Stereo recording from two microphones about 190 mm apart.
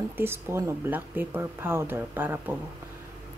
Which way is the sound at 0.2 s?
15° right (ahead or behind).